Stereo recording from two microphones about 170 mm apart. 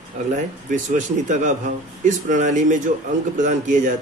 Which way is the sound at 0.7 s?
45° right (ahead or behind).